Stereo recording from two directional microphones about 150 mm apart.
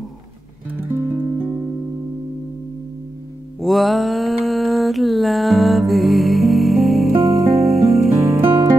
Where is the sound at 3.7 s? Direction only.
Centre (ahead or behind).